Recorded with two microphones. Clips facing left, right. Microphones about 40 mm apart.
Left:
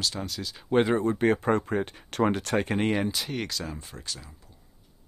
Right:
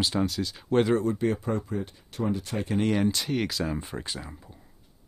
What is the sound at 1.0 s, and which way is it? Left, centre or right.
Speech, left.